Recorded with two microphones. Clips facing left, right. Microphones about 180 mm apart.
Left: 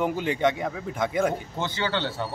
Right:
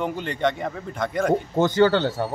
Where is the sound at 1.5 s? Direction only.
45° right (ahead or behind).